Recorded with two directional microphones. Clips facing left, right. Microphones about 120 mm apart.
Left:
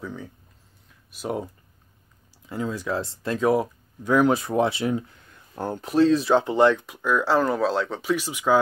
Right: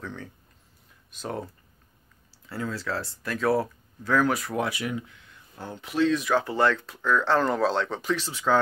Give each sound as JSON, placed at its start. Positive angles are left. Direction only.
{"t": 0.0, "sound": "a sound", "side_deg": 5}
{"t": 1.1, "sound": "speech", "side_deg": 10}
{"t": 4.3, "sound": "speech", "side_deg": 25}
{"t": 6.4, "sound": "speech", "side_deg": 20}
{"t": 8.2, "sound": "speech", "side_deg": 15}